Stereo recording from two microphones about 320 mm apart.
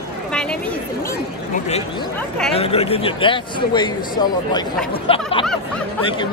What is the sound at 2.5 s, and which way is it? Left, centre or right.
A man's voice, centre.